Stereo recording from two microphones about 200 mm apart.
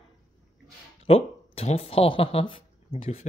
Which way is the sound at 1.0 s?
30° left (ahead or behind).